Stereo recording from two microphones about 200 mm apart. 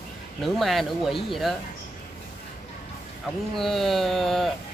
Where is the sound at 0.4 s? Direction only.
Centre (ahead or behind).